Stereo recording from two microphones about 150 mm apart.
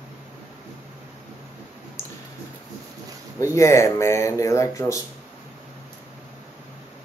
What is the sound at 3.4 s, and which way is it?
Speech, 20° left (ahead or behind).